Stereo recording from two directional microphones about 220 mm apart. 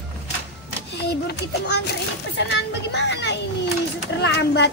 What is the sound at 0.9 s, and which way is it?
Speech, 50° left (ahead or behind).